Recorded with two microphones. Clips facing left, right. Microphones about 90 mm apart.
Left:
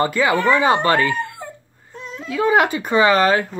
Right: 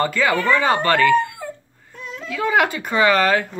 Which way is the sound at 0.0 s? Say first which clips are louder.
Left 2 dB; 20° left (ahead or behind).